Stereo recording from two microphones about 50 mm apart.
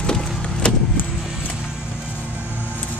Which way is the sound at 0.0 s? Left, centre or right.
Centre.